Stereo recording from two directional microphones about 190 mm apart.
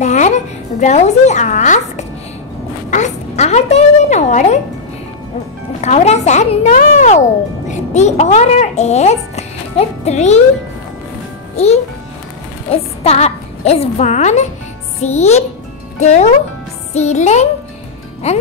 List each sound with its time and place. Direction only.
0.0 s a woman's voice: 40° left (ahead or behind)
5.8 s a child's voice: 35° left (ahead or behind)
11.5 s a child's voice: 35° left (ahead or behind)